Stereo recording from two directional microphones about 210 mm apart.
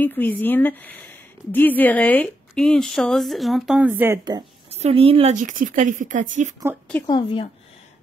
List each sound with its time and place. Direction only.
0.0 s a woman's voice: 10° left (ahead or behind); by 4.5 s 20° right (ahead or behind)
4.6 s a woman's voice: 30° right (ahead or behind)
7.1 s speech: 25° left (ahead or behind)